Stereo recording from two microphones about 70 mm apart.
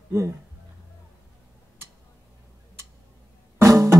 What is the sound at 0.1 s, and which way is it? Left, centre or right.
Speech, right.